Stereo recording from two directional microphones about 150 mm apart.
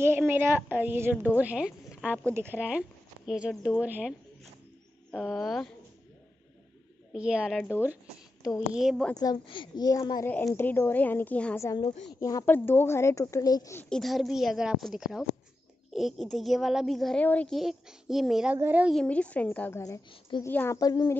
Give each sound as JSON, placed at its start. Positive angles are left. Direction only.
{"t": 0.0, "sound": "a woman's voice", "side_deg": -15}
{"t": 5.1, "sound": "speech", "side_deg": 0}
{"t": 7.1, "sound": "speech", "side_deg": -5}
{"t": 9.1, "sound": "a woman's voice", "side_deg": 25}
{"t": 12.1, "sound": "a woman's voice", "side_deg": 25}
{"t": 13.7, "sound": "speech", "side_deg": 5}
{"t": 17.6, "sound": "a woman's voice", "side_deg": -5}
{"t": 18.9, "sound": "a woman's voice", "side_deg": 10}
{"t": 20.1, "sound": "a woman's voice", "side_deg": 35}
{"t": 20.4, "sound": "a woman's voice", "side_deg": 15}